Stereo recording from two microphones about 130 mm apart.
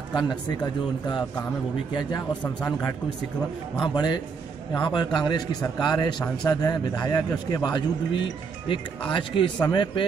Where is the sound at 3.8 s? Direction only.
35° left (ahead or behind).